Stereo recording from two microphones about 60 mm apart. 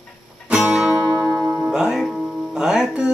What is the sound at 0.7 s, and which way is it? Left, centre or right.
Music, centre.